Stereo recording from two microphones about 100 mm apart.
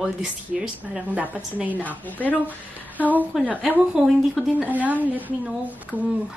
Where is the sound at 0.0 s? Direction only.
10° right (ahead or behind).